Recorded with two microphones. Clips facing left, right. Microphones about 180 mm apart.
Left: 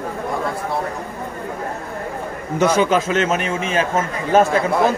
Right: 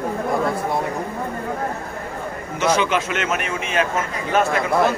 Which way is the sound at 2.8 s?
35° left (ahead or behind).